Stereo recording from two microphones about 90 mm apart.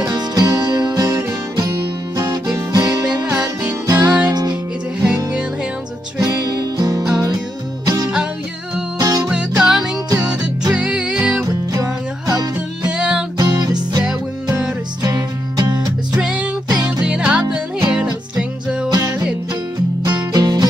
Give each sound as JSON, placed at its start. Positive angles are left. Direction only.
{"t": 0.0, "sound": "music", "side_deg": -45}
{"t": 1.1, "sound": "music", "side_deg": -35}
{"t": 1.8, "sound": "music", "side_deg": -50}
{"t": 5.0, "sound": "music", "side_deg": -15}
{"t": 6.1, "sound": "music", "side_deg": -45}
{"t": 9.6, "sound": "music", "side_deg": -5}
{"t": 11.4, "sound": "music", "side_deg": -40}
{"t": 12.8, "sound": "music", "side_deg": -10}
{"t": 13.4, "sound": "music", "side_deg": -45}
{"t": 14.0, "sound": "music", "side_deg": -10}
{"t": 15.0, "sound": "music", "side_deg": -50}
{"t": 16.2, "sound": "music", "side_deg": -10}
{"t": 18.9, "sound": "music", "side_deg": -45}